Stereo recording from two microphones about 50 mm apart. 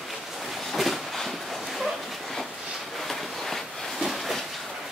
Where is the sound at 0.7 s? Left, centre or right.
Centre.